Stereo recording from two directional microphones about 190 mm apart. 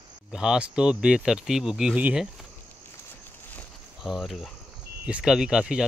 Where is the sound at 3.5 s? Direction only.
Centre (ahead or behind).